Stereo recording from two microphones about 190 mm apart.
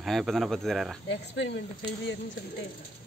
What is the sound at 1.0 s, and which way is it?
Speech, 65° left (ahead or behind).